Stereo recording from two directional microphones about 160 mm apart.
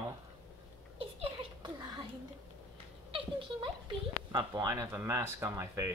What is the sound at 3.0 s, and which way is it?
Speech, 35° right (ahead or behind).